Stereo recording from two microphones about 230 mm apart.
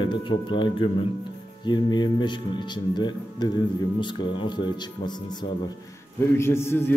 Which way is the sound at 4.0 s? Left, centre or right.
Left.